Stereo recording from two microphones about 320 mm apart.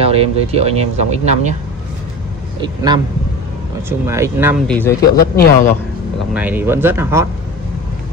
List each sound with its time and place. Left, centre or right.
0.0 s speech: centre
2.6 s speech: centre
4.0 s speech: centre
5.4 s a man's voice: left
6.3 s speech: centre